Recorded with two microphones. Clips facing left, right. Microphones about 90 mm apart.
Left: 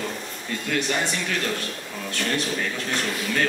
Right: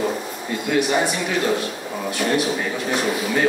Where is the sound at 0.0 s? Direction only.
15° right (ahead or behind).